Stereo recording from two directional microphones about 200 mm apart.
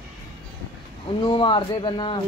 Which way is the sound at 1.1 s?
25° left (ahead or behind).